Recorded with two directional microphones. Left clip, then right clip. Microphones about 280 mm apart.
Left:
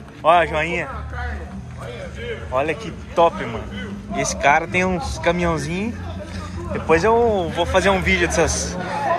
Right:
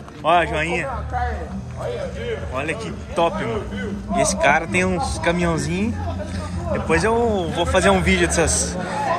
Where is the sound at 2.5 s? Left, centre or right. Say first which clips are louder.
Left 4 dB; centre.